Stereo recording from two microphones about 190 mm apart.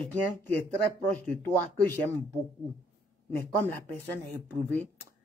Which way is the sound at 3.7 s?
10° left (ahead or behind).